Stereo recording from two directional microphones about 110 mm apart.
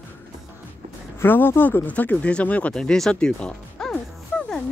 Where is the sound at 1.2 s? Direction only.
20° left (ahead or behind).